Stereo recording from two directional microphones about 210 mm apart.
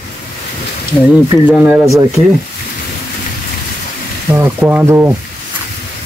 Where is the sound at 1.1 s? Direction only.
5° right (ahead or behind).